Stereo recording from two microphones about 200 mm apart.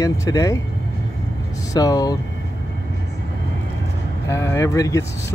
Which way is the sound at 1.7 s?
20° left (ahead or behind).